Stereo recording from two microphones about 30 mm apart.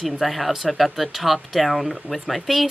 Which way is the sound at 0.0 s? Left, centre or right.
Centre.